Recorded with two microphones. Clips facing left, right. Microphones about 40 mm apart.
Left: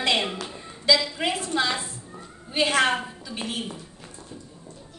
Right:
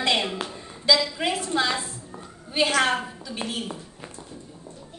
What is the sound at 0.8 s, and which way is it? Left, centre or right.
Speech, centre.